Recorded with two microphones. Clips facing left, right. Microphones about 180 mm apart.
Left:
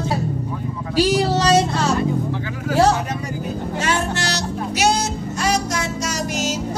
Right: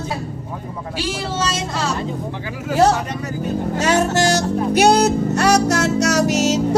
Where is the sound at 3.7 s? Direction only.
40° right (ahead or behind).